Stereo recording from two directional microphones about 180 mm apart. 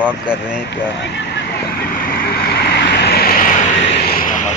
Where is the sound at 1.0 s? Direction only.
75° left (ahead or behind); by 4.5 s 45° left (ahead or behind).